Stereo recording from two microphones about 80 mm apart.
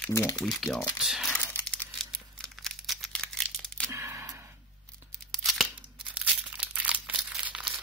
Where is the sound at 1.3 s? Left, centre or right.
Left.